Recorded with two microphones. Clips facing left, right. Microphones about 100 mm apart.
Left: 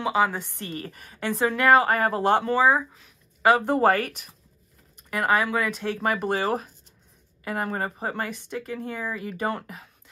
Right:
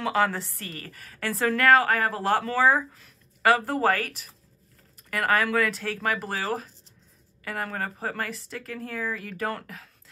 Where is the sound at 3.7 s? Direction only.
30° left (ahead or behind).